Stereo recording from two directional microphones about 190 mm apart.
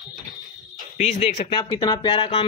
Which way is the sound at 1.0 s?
35° left (ahead or behind).